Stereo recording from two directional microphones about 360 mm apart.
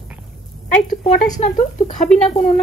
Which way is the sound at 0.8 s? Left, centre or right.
Left.